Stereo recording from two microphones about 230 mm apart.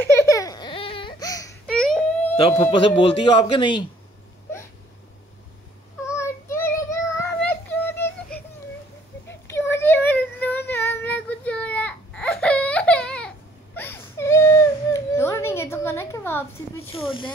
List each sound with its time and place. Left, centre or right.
0.0 s baby cry: centre
1.7 s a sound: centre
2.3 s speech: left
6.0 s child singing: centre
9.5 s child singing: centre
13.7 s whimper: centre
16.9 s snake: left